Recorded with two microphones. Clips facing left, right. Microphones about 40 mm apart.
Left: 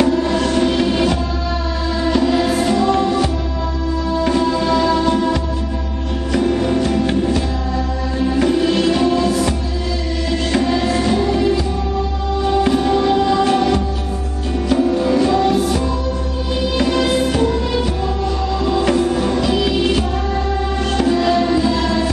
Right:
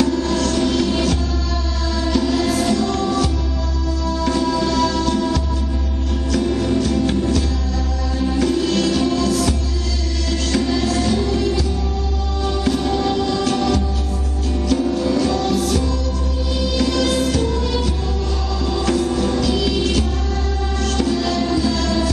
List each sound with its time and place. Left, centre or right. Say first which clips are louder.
0.0 s music: left 3 dB; left
16.7 s music of bollywood: left 2 dB; left
18.7 s music: left 3 dB; left